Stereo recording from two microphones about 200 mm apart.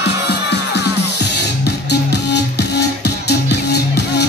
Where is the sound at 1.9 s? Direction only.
60° left (ahead or behind).